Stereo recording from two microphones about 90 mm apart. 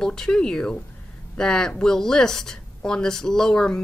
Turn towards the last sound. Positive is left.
turn(degrees=5)  # may be behind; listen again after turning